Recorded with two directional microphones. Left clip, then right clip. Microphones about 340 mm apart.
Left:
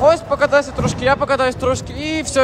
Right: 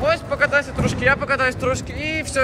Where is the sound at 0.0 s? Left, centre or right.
Centre.